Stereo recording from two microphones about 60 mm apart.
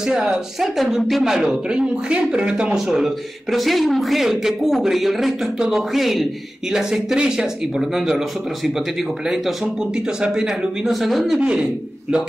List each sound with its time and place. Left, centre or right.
0.0 s speech: centre
9.9 s speech: centre
11.3 s speech: centre